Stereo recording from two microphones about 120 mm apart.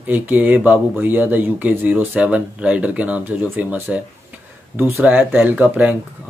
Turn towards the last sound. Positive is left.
turn(degrees=-15)  # may be behind; listen again after turning